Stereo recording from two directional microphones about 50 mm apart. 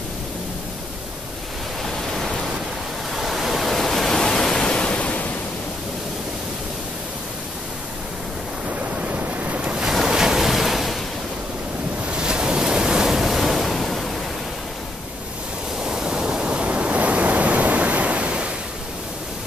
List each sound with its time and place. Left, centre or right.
3.2 s pink noise: centre; by 5.3 s left
9.1 s waves: right
9.8 s ocean: centre
12.1 s waves: centre
15.8 s waves: centre